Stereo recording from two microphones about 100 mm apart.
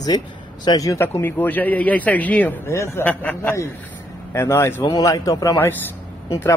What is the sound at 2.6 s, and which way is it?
Speech, 25° left (ahead or behind).